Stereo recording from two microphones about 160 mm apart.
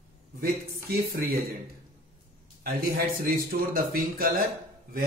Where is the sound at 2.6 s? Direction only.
65° right (ahead or behind).